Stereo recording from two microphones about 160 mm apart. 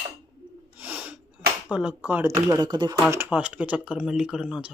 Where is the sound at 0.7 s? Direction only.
10° right (ahead or behind).